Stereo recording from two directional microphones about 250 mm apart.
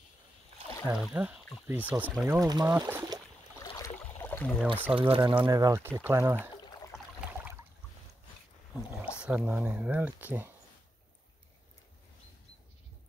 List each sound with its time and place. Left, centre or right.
0.8 s speech: centre
3.5 s boat: centre
4.2 s a sound: centre
4.9 s speech: right
7.2 s a sound: centre
9.2 s speech: centre